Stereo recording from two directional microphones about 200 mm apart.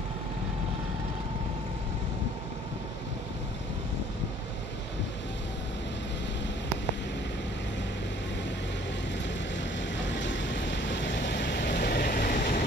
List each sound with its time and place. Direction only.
9.8 s vehicle: 65° left (ahead or behind); by 12.6 s 45° left (ahead or behind)